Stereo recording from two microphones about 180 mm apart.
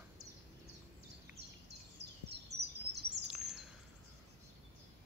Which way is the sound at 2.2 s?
70° right (ahead or behind).